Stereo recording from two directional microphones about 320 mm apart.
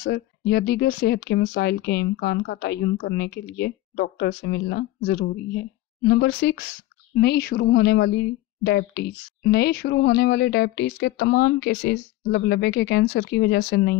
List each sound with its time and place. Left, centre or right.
0.0 s speech: left